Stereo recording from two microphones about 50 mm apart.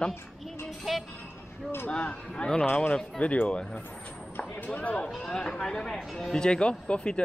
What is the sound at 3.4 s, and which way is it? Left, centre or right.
Speech, left.